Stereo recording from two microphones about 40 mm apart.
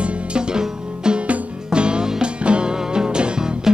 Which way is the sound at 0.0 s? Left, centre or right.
Right.